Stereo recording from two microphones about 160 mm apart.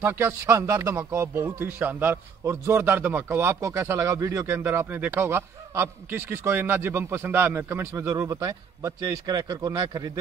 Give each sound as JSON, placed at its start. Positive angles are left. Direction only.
{"t": 0.0, "sound": "speech", "side_deg": -15}